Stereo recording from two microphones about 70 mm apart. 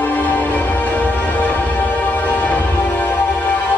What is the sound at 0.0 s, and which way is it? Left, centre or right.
Music, left.